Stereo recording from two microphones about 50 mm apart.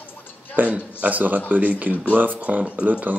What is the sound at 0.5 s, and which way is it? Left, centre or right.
Speech, right.